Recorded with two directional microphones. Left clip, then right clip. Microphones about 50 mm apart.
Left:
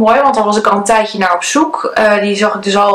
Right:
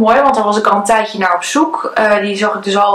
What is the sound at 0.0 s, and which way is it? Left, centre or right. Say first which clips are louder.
Speech: left 1 dB; left.